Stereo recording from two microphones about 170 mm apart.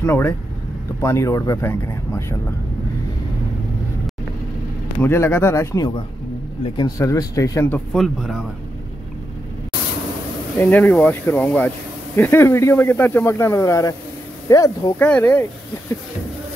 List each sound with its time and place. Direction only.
0.0 s speech: 15° left (ahead or behind)
4.9 s speech: 15° left (ahead or behind)
7.9 s speech: centre (ahead or behind)
10.6 s speech: 10° left (ahead or behind)
15.0 s speech: 10° left (ahead or behind)